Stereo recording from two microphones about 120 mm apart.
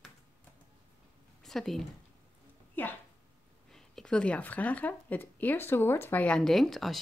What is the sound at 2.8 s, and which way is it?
Speech, 15° left (ahead or behind).